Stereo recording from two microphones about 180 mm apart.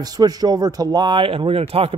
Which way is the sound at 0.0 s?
20° right (ahead or behind).